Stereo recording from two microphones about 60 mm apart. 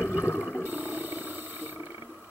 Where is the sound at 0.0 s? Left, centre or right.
Right.